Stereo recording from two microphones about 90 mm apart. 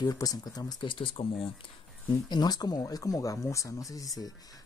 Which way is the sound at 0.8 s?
80° left.